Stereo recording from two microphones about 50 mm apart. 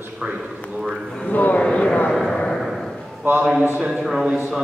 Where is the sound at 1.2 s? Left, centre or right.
Left.